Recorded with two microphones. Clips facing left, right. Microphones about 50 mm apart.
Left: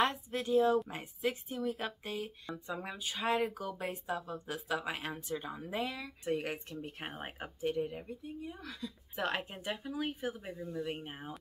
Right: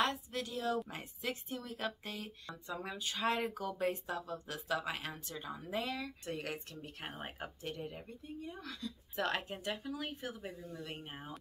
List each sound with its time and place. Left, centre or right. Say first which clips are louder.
0.0 s speech: left 3 dB; left
0.8 s speech: left 5 dB; centre
7.0 s speech: left 2 dB; centre